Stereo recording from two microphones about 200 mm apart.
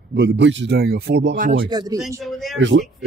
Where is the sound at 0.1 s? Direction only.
55° right (ahead or behind).